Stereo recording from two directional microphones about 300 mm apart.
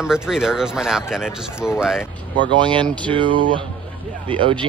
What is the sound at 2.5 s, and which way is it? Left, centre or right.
Speech, centre.